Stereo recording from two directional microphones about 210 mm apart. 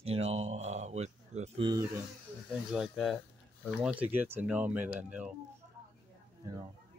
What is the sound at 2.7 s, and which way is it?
Speech, centre (ahead or behind).